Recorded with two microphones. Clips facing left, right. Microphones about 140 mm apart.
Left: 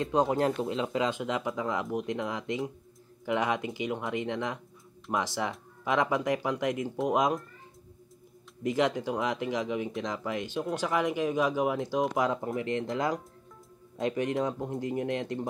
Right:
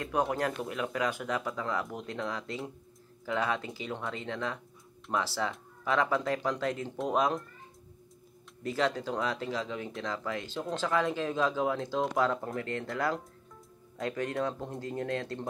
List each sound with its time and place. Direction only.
0.0 s speech: 20° left (ahead or behind)
8.6 s speech: 15° left (ahead or behind)